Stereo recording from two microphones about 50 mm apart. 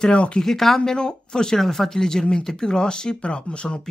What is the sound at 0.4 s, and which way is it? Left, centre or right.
Speech, centre.